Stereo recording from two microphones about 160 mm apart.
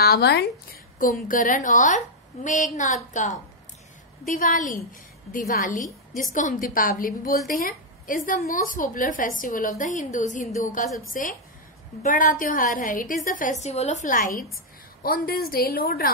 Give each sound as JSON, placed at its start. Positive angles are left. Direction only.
{"t": 0.0, "sound": "speech", "side_deg": 80}
{"t": 0.9, "sound": "a woman's voice", "side_deg": 60}
{"t": 15.0, "sound": "a woman's voice", "side_deg": 70}